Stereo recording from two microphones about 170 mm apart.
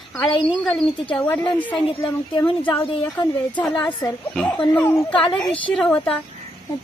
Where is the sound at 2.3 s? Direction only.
30° left (ahead or behind).